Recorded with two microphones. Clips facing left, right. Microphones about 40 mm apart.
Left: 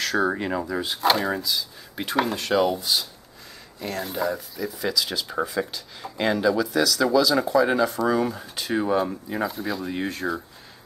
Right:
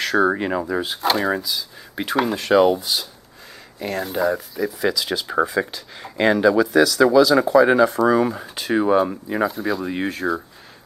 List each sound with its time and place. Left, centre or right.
0.0 s speech: centre
0.9 s speech: centre
7.6 s speech: centre
9.5 s speech: centre